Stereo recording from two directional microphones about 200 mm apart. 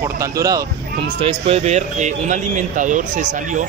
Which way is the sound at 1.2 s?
30° right (ahead or behind).